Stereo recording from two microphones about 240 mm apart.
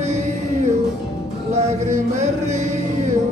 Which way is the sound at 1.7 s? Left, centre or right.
Right.